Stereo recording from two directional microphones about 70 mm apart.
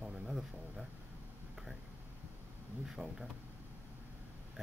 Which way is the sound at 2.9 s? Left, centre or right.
Centre.